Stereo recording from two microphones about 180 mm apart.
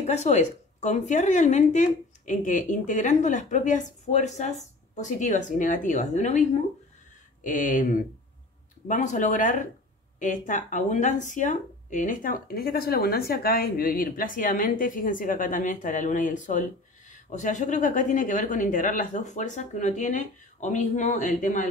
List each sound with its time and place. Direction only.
0.0 s speech: 40° left (ahead or behind)